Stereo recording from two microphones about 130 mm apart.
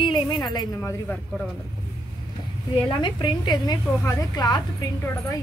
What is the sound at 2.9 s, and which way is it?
A woman's voice, 40° left (ahead or behind).